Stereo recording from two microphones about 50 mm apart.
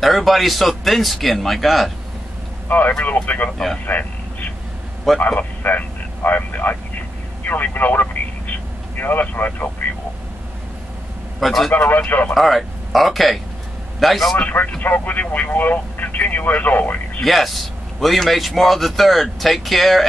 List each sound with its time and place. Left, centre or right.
0.0 s a man's voice: centre
3.0 s speech: left
3.8 s a sound: left
5.1 s a man's voice: centre
5.6 s speech: left
7.4 s vehicle: left
11.3 s a man's voice: centre
11.7 s speech: left
12.4 s a man's voice: centre
14.3 s speech: left
17.2 s a man's voice: centre